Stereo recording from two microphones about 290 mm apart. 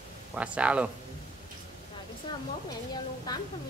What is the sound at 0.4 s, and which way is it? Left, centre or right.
Speech, centre.